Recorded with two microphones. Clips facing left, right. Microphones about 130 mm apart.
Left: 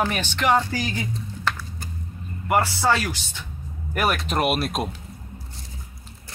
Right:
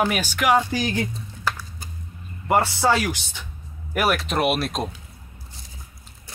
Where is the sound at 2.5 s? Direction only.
20° right (ahead or behind).